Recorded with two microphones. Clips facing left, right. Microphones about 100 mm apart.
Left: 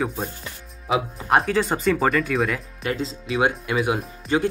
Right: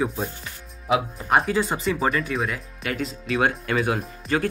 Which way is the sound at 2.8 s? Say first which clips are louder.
Even; 30° left (ahead or behind).